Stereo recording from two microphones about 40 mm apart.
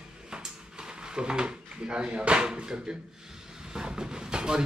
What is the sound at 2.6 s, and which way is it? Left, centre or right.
Speech, right.